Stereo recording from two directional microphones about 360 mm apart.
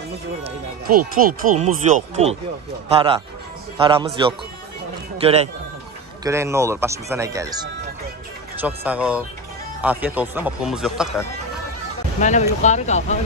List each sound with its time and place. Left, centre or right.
0.4 s speech: right
8.5 s speech: centre
12.2 s speech: centre